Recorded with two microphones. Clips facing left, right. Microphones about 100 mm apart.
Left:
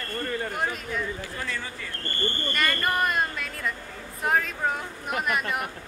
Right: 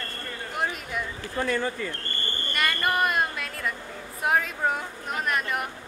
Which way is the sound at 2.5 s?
5° right (ahead or behind).